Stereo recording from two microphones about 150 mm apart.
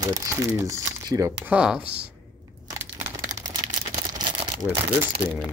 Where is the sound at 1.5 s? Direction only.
5° right (ahead or behind).